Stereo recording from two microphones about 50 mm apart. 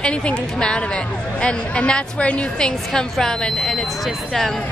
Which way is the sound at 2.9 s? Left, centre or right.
Centre.